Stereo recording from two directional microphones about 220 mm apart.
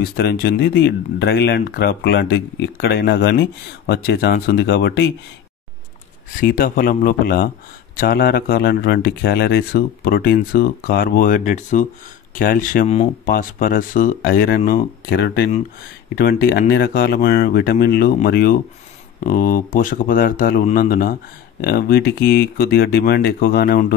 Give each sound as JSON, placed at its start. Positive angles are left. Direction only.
{"t": 0.0, "sound": "speech", "side_deg": 45}
{"t": 6.4, "sound": "speech", "side_deg": 40}
{"t": 13.3, "sound": "speech", "side_deg": 40}